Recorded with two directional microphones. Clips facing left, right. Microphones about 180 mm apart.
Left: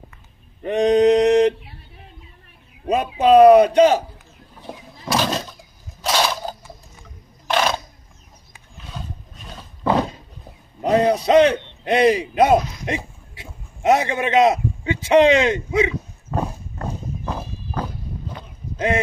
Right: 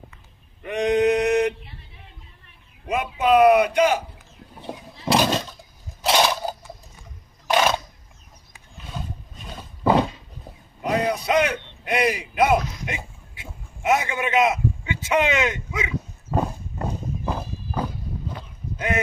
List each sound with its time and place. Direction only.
0.6 s male singing: 35° left (ahead or behind)
2.9 s a man's voice: 35° left (ahead or behind)
6.1 s a sound: 15° right (ahead or behind)
9.6 s roaring cats: 15° right (ahead or behind)
10.8 s a man's voice: 30° left (ahead or behind)
16.3 s horse: 10° right (ahead or behind)
17.4 s walk: 5° right (ahead or behind)